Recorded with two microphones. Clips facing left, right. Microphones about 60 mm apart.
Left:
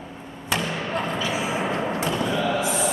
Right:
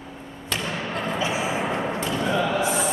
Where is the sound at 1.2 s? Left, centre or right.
Right.